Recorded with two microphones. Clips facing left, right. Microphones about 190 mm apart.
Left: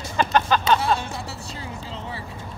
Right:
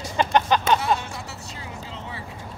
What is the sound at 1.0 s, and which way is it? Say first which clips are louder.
Music: left 3 dB; 30° left (ahead or behind).